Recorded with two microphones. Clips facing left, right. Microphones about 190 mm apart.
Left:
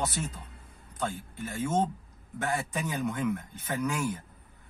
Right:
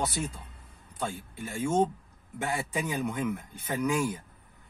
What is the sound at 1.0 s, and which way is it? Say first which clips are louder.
A man's voice: left 1 dB; 10° right (ahead or behind).